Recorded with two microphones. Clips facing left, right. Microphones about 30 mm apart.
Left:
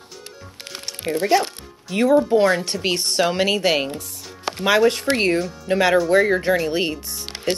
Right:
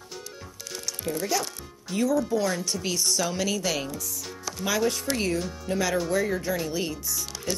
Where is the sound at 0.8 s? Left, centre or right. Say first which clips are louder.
Left 8 dB; left.